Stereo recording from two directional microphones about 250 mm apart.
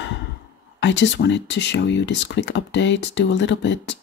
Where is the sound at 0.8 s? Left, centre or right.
Left.